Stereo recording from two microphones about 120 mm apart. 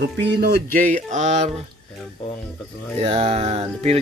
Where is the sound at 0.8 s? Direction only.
85° right.